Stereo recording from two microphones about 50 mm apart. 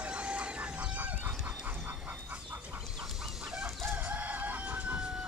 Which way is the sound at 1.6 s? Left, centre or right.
Right.